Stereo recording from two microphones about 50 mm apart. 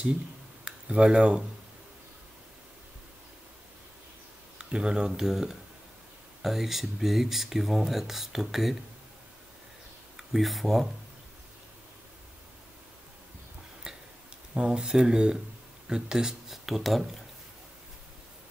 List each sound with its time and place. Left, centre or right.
0.7 s speech: right
4.6 s speech: centre
10.1 s speech: centre
13.9 s a sound: centre
14.5 s speech: centre
16.6 s speech: centre